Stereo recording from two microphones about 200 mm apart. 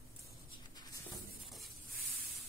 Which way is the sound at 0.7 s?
20° left (ahead or behind).